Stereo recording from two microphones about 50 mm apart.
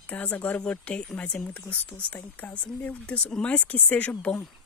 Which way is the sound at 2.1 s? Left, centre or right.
Left.